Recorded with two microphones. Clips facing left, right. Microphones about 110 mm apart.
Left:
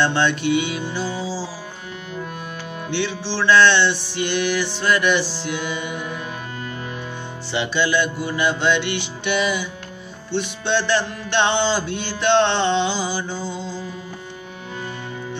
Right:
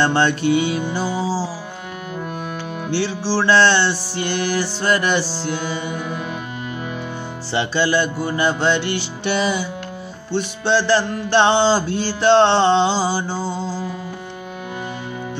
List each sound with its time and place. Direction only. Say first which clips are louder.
0.0 s music: right 2 dB; 40° right (ahead or behind)
2.9 s music: right 4 dB; 35° right (ahead or behind)
7.5 s music: right 2 dB; 35° right (ahead or behind)